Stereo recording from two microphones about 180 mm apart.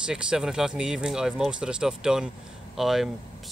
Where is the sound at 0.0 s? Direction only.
5° right (ahead or behind).